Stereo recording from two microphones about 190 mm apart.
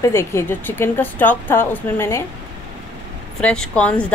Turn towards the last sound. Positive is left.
turn(degrees=5)  # may be behind; listen again after turning